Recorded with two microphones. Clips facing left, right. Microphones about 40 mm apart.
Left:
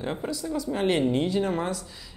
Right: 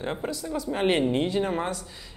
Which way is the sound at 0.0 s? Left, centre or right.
Centre.